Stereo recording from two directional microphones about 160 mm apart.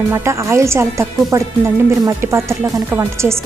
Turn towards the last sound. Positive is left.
turn(degrees=-15)  # may be behind; listen again after turning